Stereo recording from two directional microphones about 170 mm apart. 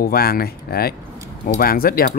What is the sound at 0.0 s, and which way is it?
Speech, 60° left (ahead or behind).